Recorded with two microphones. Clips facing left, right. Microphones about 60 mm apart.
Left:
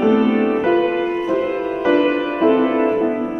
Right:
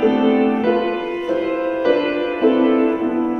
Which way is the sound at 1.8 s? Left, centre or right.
Centre.